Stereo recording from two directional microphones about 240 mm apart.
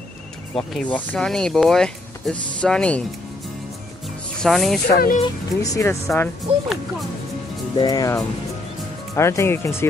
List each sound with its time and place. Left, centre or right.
0.6 s speech: centre
4.4 s speech: centre
4.8 s speech: left
5.2 s speech: centre
7.7 s speech: centre